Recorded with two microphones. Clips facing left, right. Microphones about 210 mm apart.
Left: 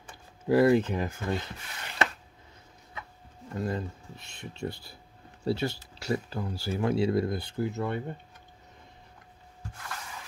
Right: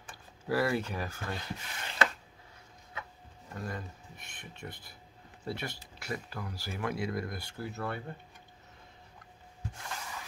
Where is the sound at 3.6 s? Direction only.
25° left (ahead or behind).